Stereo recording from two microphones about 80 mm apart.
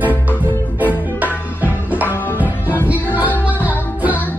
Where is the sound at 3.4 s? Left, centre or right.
Centre.